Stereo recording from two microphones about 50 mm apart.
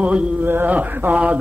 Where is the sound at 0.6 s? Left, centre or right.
Right.